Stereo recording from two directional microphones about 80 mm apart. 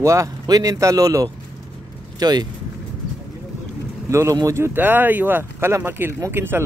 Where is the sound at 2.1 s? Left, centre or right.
Right.